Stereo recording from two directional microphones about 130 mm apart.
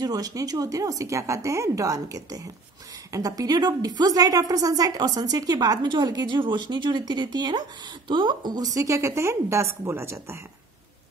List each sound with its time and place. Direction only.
0.0 s a woman's voice: 30° right (ahead or behind)